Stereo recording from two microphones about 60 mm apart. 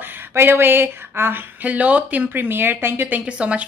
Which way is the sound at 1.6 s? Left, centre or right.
Right.